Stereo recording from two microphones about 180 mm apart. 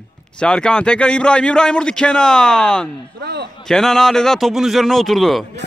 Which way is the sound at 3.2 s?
65° right (ahead or behind).